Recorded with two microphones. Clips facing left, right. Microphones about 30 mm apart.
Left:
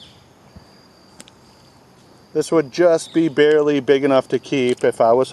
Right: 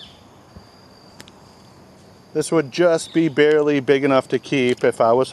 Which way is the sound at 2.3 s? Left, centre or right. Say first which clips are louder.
Left 2 dB; centre.